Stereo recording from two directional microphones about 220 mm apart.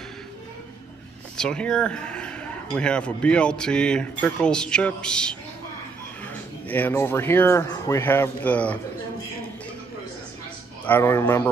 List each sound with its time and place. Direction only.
1.3 s speech: 5° left (ahead or behind)
10.9 s speech: 10° left (ahead or behind)